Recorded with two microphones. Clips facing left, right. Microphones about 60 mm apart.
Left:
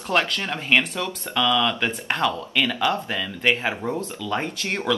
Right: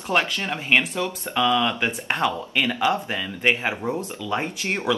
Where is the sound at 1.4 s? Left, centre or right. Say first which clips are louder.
Even; right.